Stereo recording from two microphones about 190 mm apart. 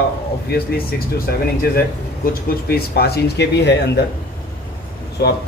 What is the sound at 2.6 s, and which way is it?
Speech, 55° left (ahead or behind).